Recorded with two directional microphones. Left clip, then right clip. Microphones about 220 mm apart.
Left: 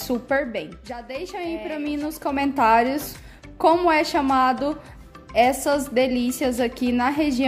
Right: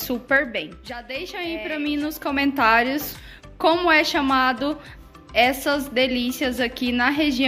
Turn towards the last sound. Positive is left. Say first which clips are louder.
# right 1 dB
turn(degrees=15)  # may be behind; listen again after turning